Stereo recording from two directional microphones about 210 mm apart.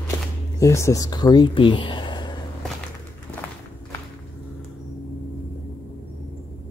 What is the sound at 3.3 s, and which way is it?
Walk, 10° left (ahead or behind).